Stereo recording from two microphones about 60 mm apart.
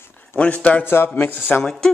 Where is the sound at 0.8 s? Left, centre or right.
Left.